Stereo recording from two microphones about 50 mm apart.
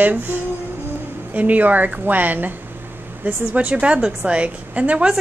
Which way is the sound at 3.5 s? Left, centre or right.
Right.